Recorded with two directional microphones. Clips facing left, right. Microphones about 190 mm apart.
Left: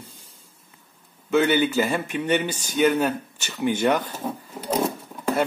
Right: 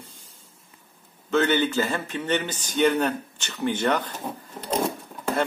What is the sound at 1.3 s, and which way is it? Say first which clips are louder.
Speech: left 2 dB; 10° left (ahead or behind).